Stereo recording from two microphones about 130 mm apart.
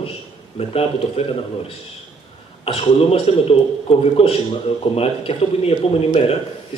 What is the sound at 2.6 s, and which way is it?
A man's voice, 50° left (ahead or behind).